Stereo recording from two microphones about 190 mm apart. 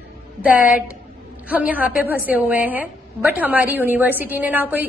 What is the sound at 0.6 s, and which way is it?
Speech, 50° left (ahead or behind).